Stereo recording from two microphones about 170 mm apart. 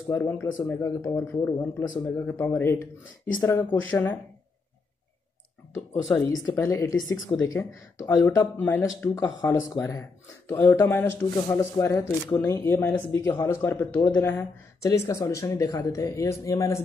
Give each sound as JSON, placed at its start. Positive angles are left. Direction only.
{"t": 0.1, "sound": "speech", "side_deg": 15}
{"t": 6.0, "sound": "speech", "side_deg": 20}
{"t": 11.3, "sound": "speech", "side_deg": 25}